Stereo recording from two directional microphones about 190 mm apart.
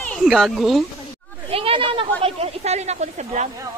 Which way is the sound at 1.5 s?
30° right (ahead or behind).